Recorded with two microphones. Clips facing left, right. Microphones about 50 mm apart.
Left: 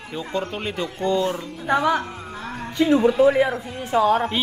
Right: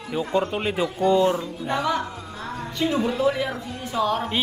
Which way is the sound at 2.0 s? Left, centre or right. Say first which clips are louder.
Left 1 dB; left.